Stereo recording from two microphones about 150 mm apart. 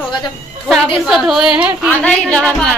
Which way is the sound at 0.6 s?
Centre (ahead or behind).